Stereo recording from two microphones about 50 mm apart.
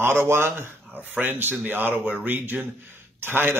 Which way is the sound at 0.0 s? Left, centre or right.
Right.